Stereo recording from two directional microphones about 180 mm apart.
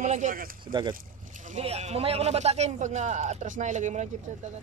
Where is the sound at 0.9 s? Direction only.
45° right (ahead or behind).